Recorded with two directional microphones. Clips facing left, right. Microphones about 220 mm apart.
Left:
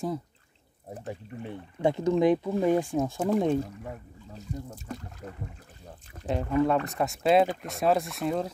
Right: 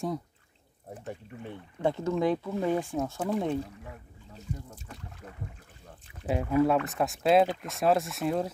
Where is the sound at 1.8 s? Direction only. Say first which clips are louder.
Left 4 dB; 15° left (ahead or behind).